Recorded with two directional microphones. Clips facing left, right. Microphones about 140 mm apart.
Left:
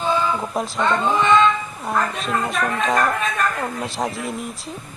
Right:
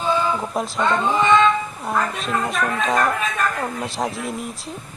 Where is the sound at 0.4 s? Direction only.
Centre (ahead or behind).